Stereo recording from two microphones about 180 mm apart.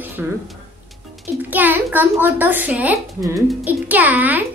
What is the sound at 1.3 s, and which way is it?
A woman's voice, 10° right (ahead or behind).